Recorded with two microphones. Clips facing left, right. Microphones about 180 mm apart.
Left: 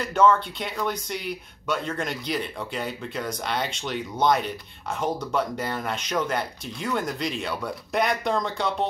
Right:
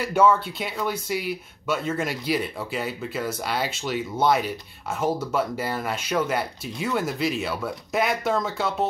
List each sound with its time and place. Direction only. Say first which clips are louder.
0.0 s speech: even; 10° right (ahead or behind)